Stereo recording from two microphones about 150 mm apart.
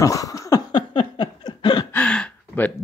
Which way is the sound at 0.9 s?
40° left (ahead or behind).